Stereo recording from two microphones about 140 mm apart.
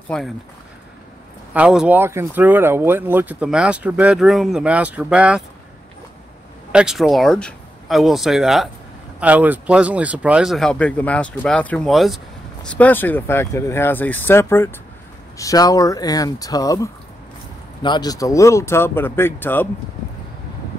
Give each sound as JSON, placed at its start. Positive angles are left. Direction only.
{"t": 0.1, "sound": "speech", "side_deg": 5}
{"t": 1.5, "sound": "speech", "side_deg": -5}
{"t": 6.7, "sound": "speech", "side_deg": -5}
{"t": 12.6, "sound": "speech", "side_deg": 10}